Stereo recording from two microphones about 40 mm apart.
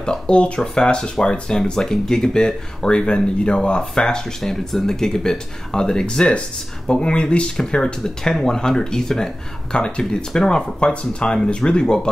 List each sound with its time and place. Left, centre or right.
0.0 s speech: left
1.6 s speech: centre
4.4 s speech: centre; by 10.0 s left
10.3 s speech: centre